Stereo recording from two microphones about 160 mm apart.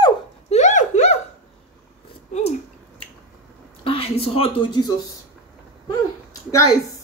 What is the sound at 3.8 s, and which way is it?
Speech, 35° left (ahead or behind).